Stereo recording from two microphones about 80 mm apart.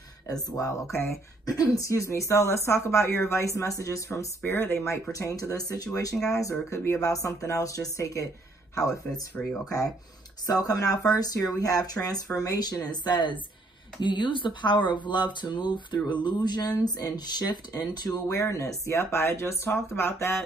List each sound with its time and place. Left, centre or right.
0.3 s speech: left
4.4 s speech: left
5.1 s speech: left
10.4 s speech: left
14.0 s speech: left
16.3 s speech: left
18.3 s speech: left